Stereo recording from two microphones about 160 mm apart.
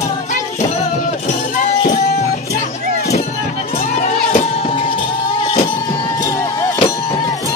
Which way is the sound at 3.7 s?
45° left (ahead or behind).